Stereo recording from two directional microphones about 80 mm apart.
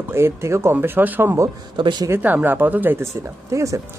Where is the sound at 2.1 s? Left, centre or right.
Right.